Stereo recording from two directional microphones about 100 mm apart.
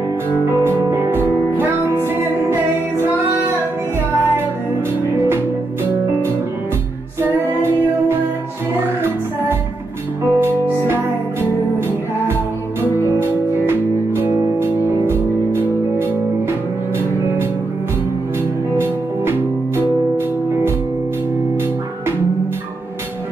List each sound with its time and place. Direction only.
0.7 s music: 25° right (ahead or behind)
10.2 s music: 25° right (ahead or behind)
13.2 s music: 25° right (ahead or behind)
18.8 s music: 25° right (ahead or behind)